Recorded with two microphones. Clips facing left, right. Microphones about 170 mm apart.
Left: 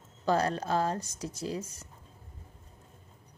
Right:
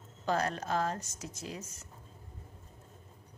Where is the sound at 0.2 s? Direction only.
35° left (ahead or behind).